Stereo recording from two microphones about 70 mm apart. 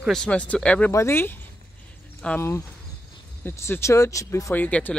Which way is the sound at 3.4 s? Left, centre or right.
Left.